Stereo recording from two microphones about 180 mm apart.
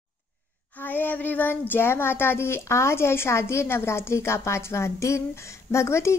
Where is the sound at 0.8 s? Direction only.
10° left (ahead or behind).